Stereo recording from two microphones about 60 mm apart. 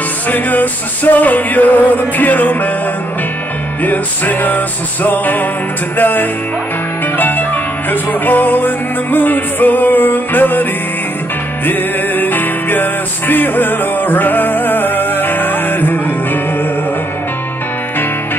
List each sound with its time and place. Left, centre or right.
0.3 s music: left
3.8 s music: left